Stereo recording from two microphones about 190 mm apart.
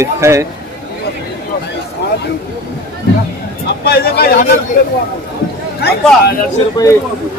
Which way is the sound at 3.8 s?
55° left (ahead or behind).